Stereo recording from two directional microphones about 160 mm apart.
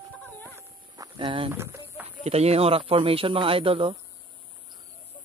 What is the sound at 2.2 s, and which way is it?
Speech, 40° right (ahead or behind).